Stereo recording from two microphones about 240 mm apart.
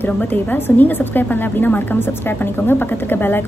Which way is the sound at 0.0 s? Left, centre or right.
Centre.